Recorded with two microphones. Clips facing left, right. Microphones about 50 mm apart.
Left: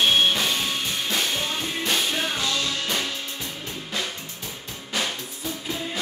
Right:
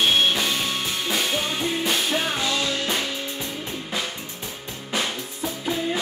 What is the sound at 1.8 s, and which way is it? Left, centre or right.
Music, centre.